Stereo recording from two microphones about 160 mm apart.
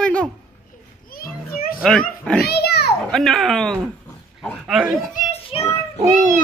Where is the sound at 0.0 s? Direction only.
5° left (ahead or behind).